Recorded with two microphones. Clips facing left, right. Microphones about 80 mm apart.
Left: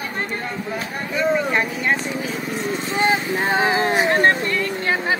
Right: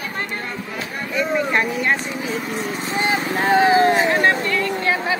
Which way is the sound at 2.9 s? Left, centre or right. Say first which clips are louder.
Left 1 dB; left.